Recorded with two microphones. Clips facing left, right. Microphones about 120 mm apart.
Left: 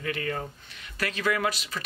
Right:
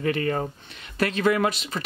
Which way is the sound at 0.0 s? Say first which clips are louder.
Right 7 dB; 35° right (ahead or behind).